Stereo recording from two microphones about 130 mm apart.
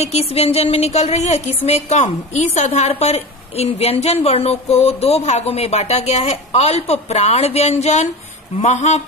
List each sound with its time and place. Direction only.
0.0 s speech: 55° left (ahead or behind)